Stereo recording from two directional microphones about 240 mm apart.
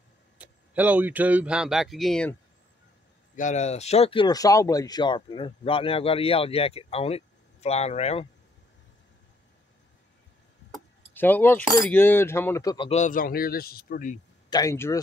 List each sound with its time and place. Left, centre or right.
0.4 s speech: centre
3.3 s speech: left
10.7 s keys jangling: centre
11.8 s speech: centre; by 14.1 s left
14.5 s speech: centre